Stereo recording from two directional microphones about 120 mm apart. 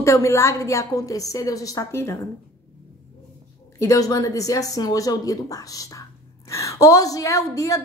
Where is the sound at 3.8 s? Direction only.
30° left (ahead or behind).